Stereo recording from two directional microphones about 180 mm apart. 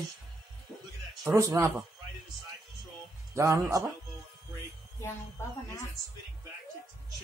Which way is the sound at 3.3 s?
15° right (ahead or behind).